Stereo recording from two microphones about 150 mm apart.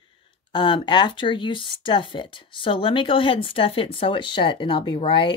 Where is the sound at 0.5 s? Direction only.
30° left (ahead or behind).